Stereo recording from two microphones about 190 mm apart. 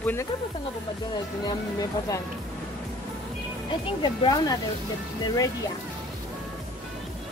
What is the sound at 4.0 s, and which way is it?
Speech, 20° left (ahead or behind).